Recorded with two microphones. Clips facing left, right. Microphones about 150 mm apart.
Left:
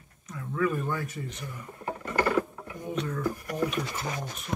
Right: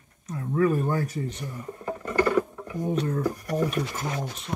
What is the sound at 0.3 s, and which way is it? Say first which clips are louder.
Speech: right 5 dB; 35° right (ahead or behind).